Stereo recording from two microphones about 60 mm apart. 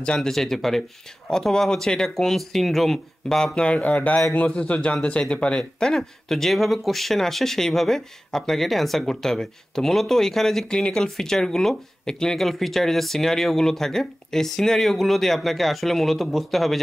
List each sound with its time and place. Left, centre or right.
0.0 s a man's voice: centre